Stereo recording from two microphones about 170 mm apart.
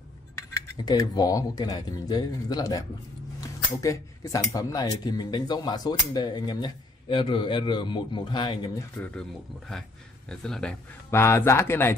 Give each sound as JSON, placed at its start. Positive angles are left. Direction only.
{"t": 0.4, "sound": "speech", "side_deg": 25}
{"t": 8.9, "sound": "speech", "side_deg": 10}